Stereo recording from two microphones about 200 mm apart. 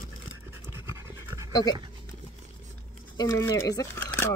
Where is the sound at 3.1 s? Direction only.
20° left (ahead or behind).